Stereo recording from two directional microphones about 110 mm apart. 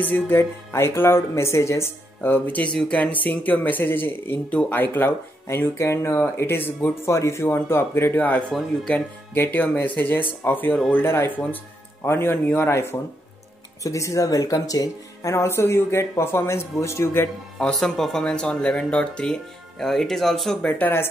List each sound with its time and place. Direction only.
0.0 s speech: 20° left (ahead or behind)
17.6 s speech: 5° left (ahead or behind)
20.7 s speech: 20° left (ahead or behind)